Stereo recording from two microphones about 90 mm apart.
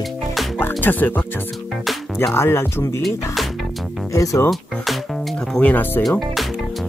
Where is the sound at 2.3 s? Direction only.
30° left (ahead or behind).